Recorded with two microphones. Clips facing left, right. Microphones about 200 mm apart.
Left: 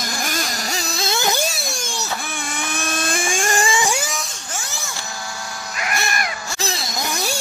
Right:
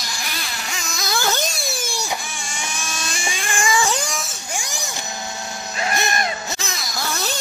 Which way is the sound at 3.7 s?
20° left (ahead or behind).